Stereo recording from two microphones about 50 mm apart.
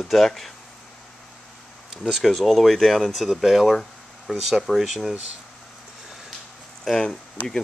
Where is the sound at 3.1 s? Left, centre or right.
Centre.